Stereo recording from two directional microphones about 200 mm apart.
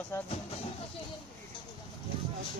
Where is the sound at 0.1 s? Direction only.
10° left (ahead or behind).